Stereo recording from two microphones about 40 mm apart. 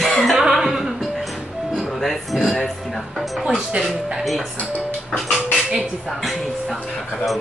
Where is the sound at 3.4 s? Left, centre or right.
Centre.